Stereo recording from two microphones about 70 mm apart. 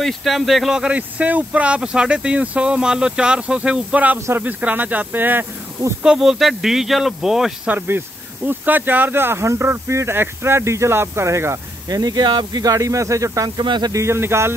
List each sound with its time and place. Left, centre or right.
0.0 s speech: centre
0.7 s speech: centre
6.0 s speech: centre
7.6 s speech: right
11.9 s speech: right
12.7 s speech: right
13.6 s speech: right
13.9 s speech: right